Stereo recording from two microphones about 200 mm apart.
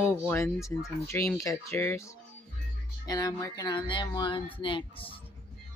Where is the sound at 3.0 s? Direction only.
15° left (ahead or behind).